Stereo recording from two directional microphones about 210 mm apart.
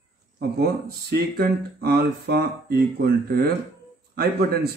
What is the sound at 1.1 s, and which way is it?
A man's voice, 45° right (ahead or behind).